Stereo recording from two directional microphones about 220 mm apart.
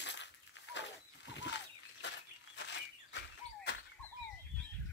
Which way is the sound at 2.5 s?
50° left (ahead or behind).